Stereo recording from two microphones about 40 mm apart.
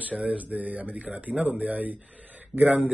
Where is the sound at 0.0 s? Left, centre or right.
Right.